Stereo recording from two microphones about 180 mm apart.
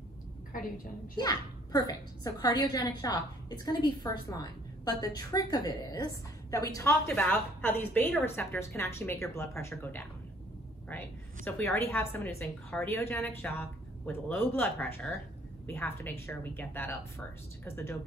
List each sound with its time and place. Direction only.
1.1 s a woman's voice: 20° left (ahead or behind)
11.4 s a woman's voice: 10° left (ahead or behind)